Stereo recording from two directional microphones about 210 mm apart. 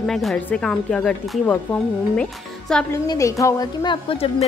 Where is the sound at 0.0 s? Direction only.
Centre (ahead or behind).